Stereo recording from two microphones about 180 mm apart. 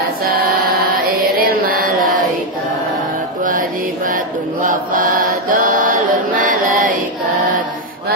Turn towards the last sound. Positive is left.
turn(degrees=-50)  # may be behind; listen again after turning